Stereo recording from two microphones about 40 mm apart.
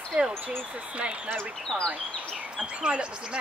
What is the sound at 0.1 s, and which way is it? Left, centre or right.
Speech, right.